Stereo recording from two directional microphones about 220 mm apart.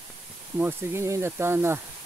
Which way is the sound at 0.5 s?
10° right (ahead or behind).